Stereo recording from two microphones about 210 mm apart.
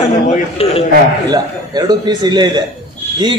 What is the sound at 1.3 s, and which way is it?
Speech, 20° right (ahead or behind).